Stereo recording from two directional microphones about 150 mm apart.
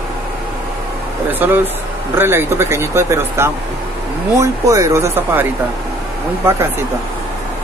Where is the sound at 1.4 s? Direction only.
10° right (ahead or behind).